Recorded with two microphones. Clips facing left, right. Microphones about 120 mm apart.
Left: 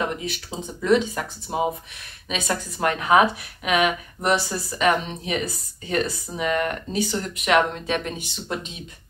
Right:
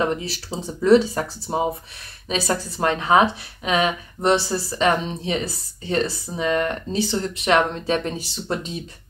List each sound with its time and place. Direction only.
0.0 s a woman's voice: 35° right (ahead or behind)